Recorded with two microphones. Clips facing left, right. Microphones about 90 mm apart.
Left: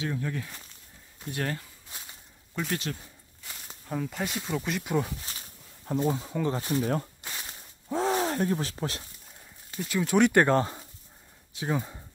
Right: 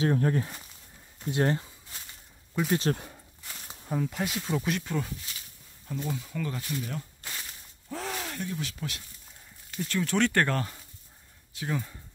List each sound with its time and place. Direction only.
0.0 s speech: 45° right (ahead or behind)
1.3 s speech: 25° right (ahead or behind)
2.5 s speech: 5° right (ahead or behind)
3.9 s speech: 5° right (ahead or behind)
4.8 s speech: 15° left (ahead or behind)
5.9 s speech: 35° left (ahead or behind)
7.4 s a sound: 30° left (ahead or behind)
9.8 s speech: 10° left (ahead or behind)